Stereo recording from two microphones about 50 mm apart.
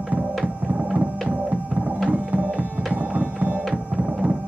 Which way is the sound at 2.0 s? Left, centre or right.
Right.